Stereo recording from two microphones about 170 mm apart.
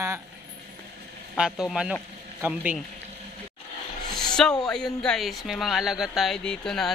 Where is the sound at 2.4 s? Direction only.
10° right (ahead or behind).